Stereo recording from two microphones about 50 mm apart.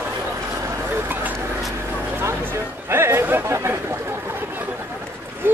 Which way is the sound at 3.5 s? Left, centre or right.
Right.